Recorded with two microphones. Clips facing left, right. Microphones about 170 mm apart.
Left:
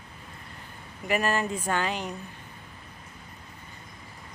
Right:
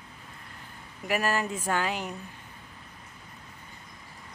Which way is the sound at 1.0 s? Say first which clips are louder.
Left 1 dB; 5° right (ahead or behind).